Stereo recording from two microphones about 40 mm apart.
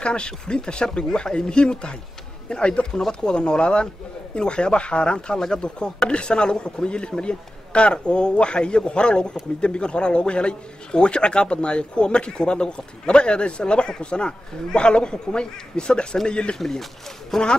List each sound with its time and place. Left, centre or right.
0.0 s speech: left
16.5 s speech: centre